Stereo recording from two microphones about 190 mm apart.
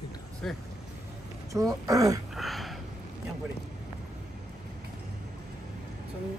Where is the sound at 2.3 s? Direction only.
Centre (ahead or behind).